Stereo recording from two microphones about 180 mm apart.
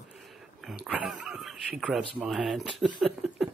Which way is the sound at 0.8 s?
5° right (ahead or behind).